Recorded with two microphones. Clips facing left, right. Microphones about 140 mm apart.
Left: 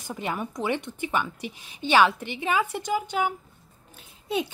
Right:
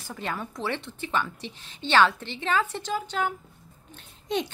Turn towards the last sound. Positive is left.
turn(degrees=5)  # may be behind; listen again after turning